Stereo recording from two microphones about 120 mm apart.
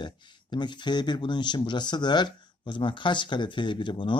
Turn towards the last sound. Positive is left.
turn(degrees=45)  # may be behind; listen again after turning